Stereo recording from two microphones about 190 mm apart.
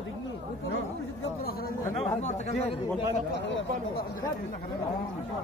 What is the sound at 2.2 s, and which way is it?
Chatter, 35° left (ahead or behind).